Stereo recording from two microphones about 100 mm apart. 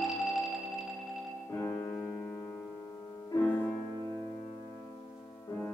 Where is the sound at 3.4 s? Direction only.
15° left (ahead or behind).